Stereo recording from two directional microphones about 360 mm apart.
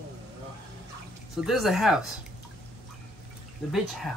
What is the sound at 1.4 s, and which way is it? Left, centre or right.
Speech, centre.